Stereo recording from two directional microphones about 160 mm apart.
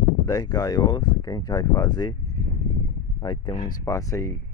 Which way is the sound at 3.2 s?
30° left (ahead or behind).